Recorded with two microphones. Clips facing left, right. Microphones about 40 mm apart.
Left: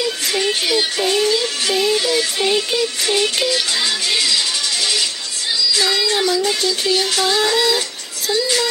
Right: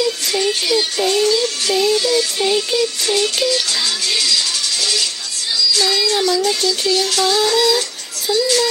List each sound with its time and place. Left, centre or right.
0.0 s speech: centre